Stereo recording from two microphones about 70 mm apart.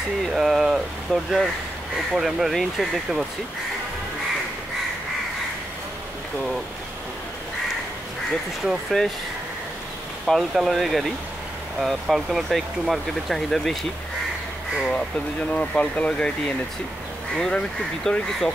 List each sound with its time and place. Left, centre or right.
0.3 s speech: centre
8.9 s speech: centre
10.2 s speech: centre
15.5 s speech: centre
17.4 s speech: centre